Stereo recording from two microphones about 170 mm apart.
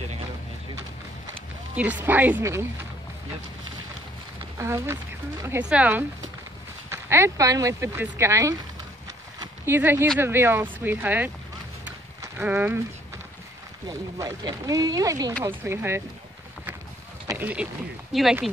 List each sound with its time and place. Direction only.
1.8 s speech: 10° right (ahead or behind)
4.6 s speech: 15° right (ahead or behind)
9.7 s speech: 15° right (ahead or behind)
11.8 s horse: 10° right (ahead or behind)
13.8 s speech: 25° right (ahead or behind)
17.3 s speech: 10° right (ahead or behind)